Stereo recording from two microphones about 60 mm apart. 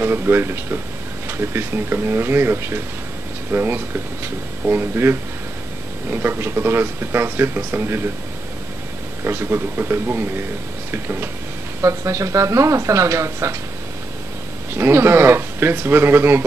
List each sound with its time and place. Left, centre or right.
0.0 s speech: right
9.2 s speech: right
11.8 s speech: right
14.7 s speech: right